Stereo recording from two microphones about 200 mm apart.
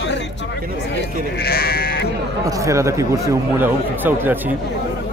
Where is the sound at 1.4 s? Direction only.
50° left (ahead or behind).